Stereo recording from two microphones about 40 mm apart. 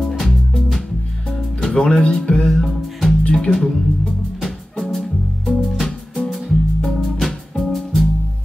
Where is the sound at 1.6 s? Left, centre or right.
Centre.